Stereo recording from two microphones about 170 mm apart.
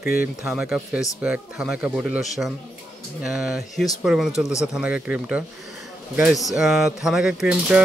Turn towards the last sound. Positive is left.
turn(degrees=-5)  # may be behind; listen again after turning